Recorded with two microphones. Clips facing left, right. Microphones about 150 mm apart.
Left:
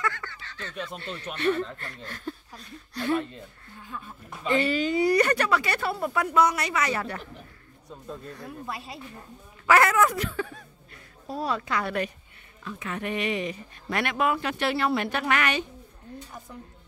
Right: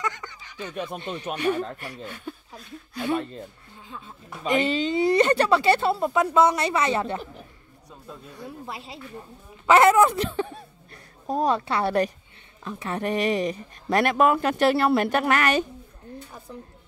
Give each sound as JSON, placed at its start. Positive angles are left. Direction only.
{"t": 0.0, "sound": "a sound", "side_deg": -15}
{"t": 0.8, "sound": "speech", "side_deg": -20}
{"t": 3.8, "sound": "speech", "side_deg": -25}
{"t": 8.4, "sound": "speech", "side_deg": -25}
{"t": 11.2, "sound": "a woman's voice", "side_deg": -45}
{"t": 11.5, "sound": "speech", "side_deg": -30}